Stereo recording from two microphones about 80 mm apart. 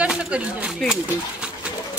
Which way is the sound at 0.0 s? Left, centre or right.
Centre.